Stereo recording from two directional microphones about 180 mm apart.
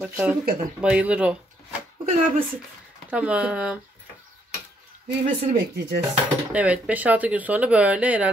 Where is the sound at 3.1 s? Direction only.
5° right (ahead or behind).